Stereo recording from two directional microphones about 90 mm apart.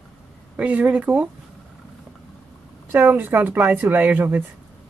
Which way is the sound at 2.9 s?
20° right (ahead or behind).